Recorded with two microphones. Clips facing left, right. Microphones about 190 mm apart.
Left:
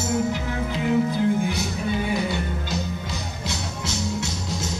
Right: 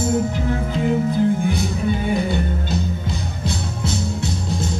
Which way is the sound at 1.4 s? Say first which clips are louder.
Right 5 dB; 55° right (ahead or behind).